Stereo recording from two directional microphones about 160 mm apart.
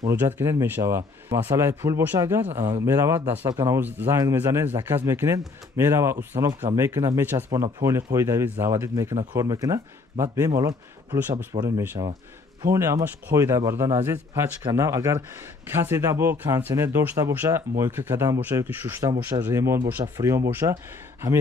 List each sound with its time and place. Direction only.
0.2 s speech: 15° right (ahead or behind)